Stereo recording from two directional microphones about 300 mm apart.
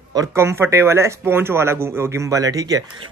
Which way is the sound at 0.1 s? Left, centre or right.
Centre.